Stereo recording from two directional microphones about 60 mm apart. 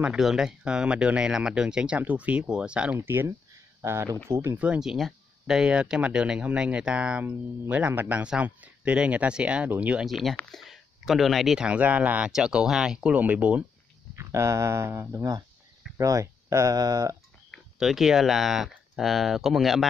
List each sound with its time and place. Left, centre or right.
0.2 s speech: centre
3.0 s speech: right
4.7 s speech: centre
5.0 s a sound: centre
5.7 s speech: centre
10.0 s speech: centre
11.5 s speech: centre
12.3 s speech: centre
13.1 s speech: right
14.1 s speech: right
16.0 s speech: right
16.7 s speech: right
17.7 s speech: centre